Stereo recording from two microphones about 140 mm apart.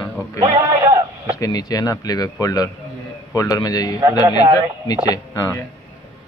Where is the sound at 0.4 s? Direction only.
25° right (ahead or behind).